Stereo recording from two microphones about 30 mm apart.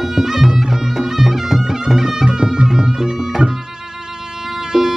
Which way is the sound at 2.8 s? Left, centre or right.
Centre.